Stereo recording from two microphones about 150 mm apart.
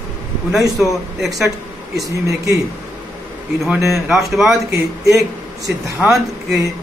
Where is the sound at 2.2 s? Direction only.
20° right (ahead or behind).